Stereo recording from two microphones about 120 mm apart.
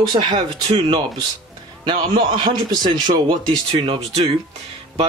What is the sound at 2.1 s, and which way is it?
Speech, 45° right (ahead or behind).